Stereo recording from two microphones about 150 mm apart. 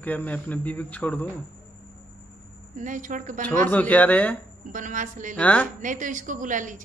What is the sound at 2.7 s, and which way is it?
Speech, 60° right (ahead or behind).